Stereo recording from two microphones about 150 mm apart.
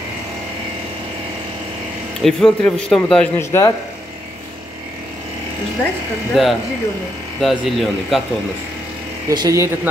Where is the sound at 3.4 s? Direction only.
20° left (ahead or behind).